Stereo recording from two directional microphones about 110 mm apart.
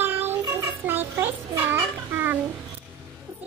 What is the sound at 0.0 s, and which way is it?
Child singing, 20° right (ahead or behind).